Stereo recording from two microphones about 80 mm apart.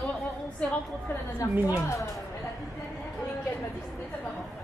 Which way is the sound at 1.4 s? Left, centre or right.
Left.